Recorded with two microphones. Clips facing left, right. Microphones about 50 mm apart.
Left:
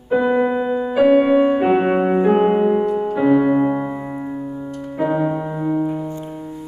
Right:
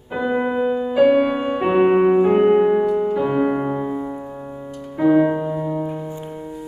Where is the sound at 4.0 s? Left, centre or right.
Left.